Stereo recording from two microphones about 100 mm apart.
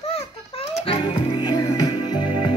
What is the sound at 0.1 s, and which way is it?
Music, 75° left (ahead or behind).